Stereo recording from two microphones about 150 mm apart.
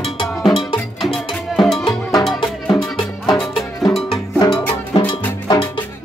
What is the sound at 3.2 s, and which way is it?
Music, centre (ahead or behind).